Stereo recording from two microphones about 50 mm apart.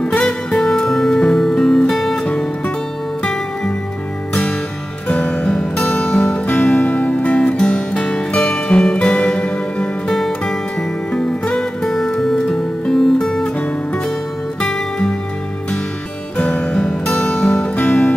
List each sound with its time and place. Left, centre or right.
0.2 s music: centre
2.1 s music: left
4.3 s music: left
7.5 s music: centre
14.6 s music: centre
16.3 s music: left